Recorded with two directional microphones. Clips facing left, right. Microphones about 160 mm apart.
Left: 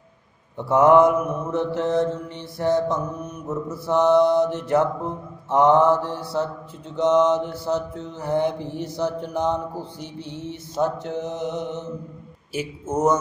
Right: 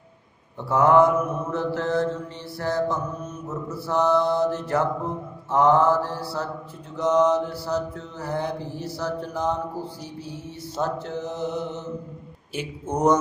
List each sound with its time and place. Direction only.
0.7 s mantra: 20° left (ahead or behind)
10.8 s mantra: 20° left (ahead or behind)
12.5 s speech: 5° left (ahead or behind)